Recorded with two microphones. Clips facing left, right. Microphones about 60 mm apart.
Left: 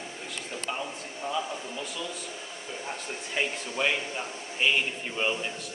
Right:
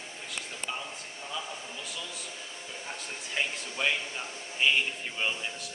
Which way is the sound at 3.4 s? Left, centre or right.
Centre.